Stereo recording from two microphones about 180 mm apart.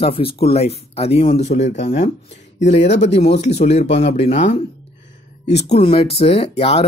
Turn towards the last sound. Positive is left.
turn(degrees=35)  # may be behind; listen again after turning